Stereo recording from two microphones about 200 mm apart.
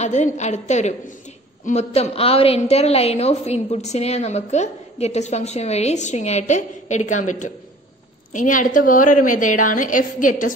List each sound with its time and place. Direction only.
0.0 s a woman's voice: 35° left (ahead or behind)